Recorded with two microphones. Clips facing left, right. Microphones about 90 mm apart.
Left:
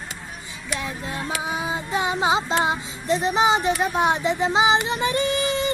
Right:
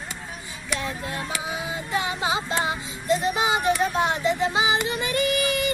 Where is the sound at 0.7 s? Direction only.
20° left (ahead or behind).